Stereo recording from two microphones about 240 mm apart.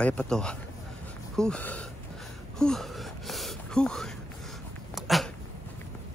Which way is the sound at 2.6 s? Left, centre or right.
Centre.